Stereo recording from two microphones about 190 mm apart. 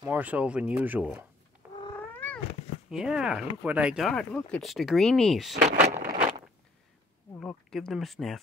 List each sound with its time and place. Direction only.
0.0 s speech: 10° right (ahead or behind)
1.6 s cat: 5° right (ahead or behind)
2.1 s cat: 10° left (ahead or behind)
2.9 s speech: 5° right (ahead or behind)
5.7 s vehicle: 35° right (ahead or behind)
7.3 s speech: 5° left (ahead or behind)